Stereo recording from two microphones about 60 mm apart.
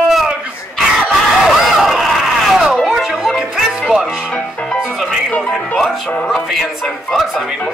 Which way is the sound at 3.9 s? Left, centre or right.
Centre.